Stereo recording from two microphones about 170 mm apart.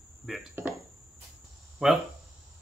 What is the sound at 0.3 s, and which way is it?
Speech, centre (ahead or behind).